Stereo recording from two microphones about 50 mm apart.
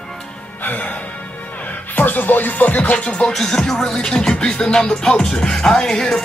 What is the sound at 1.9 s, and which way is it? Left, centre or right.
Music, left.